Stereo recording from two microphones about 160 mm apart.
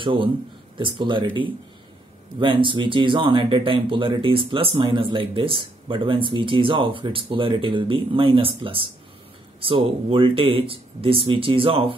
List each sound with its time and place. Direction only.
0.0 s speech: 30° right (ahead or behind)